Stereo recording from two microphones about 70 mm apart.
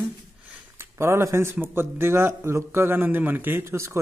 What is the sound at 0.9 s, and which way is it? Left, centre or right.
A man's voice, right.